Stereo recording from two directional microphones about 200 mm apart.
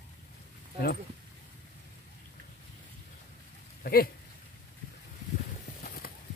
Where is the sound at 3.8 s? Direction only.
50° left (ahead or behind).